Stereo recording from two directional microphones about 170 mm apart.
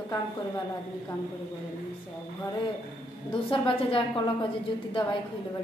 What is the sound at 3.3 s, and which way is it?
A woman's voice, 30° left (ahead or behind).